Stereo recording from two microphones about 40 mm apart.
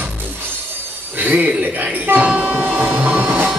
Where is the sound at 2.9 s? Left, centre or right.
Right.